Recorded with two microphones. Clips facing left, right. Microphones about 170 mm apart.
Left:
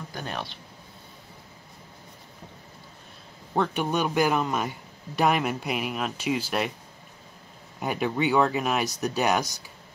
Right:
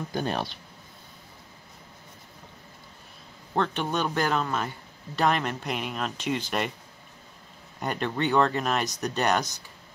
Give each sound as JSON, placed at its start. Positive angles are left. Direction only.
{"t": 0.1, "sound": "speech", "side_deg": -30}
{"t": 3.5, "sound": "speech", "side_deg": 5}
{"t": 7.8, "sound": "speech", "side_deg": 10}